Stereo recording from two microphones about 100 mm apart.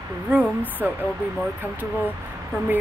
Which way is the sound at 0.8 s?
20° right (ahead or behind).